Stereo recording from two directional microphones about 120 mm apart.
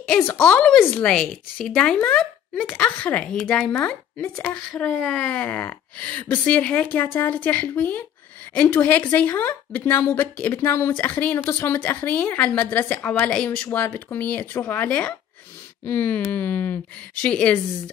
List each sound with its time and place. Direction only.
0.0 s a woman's voice: 10° left (ahead or behind)
3.7 s a woman's voice: 15° left (ahead or behind)